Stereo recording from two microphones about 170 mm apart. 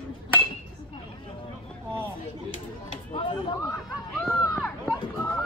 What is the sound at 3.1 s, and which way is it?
Chatter, 35° left (ahead or behind).